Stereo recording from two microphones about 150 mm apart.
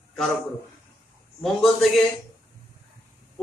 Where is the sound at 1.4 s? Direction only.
Centre (ahead or behind).